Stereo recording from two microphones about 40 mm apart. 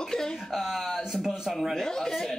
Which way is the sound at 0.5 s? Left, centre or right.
Centre.